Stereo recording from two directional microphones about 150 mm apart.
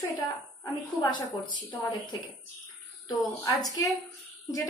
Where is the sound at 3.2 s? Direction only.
Centre (ahead or behind).